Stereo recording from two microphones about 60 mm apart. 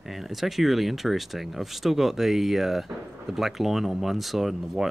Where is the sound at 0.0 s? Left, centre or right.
Centre.